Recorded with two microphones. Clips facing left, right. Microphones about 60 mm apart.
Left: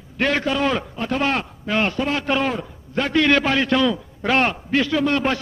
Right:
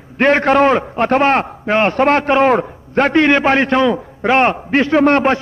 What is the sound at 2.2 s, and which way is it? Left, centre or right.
A man's voice, right.